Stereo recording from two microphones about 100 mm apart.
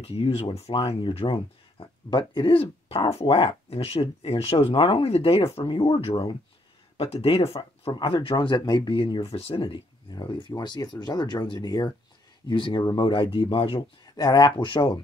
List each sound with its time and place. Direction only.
0.0 s speech: 75° left (ahead or behind); by 2.5 s 50° left (ahead or behind)
2.5 s speech: 70° left (ahead or behind)
5.7 s speech: 65° left (ahead or behind)
7.9 s speech: 60° left (ahead or behind)
10.5 s speech: 40° left (ahead or behind)
12.4 s speech: 55° left (ahead or behind)
13.7 s speech: 40° left (ahead or behind)